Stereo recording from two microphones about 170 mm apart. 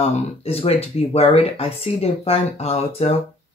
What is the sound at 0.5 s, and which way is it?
Speech, 35° left (ahead or behind).